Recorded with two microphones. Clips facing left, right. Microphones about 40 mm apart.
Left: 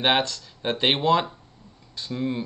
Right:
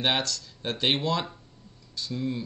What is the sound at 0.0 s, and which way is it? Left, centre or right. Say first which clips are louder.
Speech: left 5 dB; left.